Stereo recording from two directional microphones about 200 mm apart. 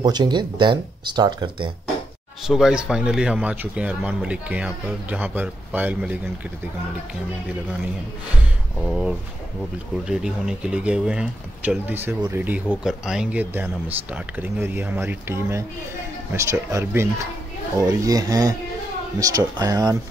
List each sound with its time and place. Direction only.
0.0 s speech: 20° right (ahead or behind)
2.4 s speech: centre (ahead or behind)
8.8 s speech: 5° right (ahead or behind)